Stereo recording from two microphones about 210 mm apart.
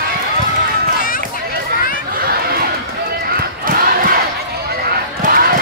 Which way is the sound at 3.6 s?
40° right (ahead or behind).